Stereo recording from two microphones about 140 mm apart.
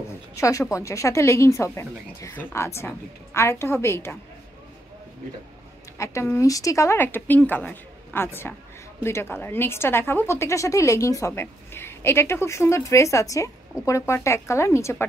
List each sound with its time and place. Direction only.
0.4 s speech: 20° left (ahead or behind)
5.9 s speech: 20° left (ahead or behind)